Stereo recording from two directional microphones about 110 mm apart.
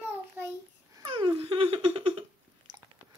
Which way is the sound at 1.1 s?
50° right (ahead or behind).